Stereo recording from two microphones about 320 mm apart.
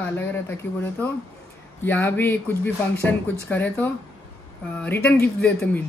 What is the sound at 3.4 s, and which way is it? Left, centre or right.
Speech, centre.